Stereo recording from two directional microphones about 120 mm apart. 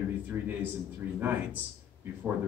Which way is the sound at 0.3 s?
20° right (ahead or behind).